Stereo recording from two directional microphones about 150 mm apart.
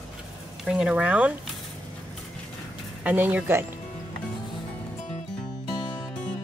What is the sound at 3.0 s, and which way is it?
Speech, 10° right (ahead or behind).